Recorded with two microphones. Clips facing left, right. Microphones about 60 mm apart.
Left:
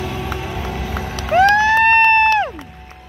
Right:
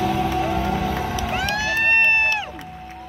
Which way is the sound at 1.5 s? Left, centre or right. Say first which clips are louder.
Left 8 dB; left.